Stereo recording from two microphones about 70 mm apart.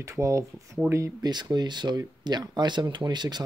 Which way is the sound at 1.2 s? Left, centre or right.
Right.